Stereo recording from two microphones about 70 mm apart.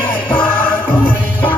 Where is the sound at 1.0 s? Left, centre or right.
Left.